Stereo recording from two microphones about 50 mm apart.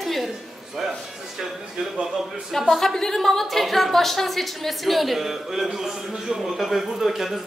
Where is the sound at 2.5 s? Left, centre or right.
Centre.